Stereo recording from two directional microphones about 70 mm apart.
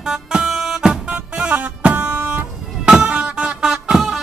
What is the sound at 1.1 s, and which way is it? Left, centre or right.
Music, right.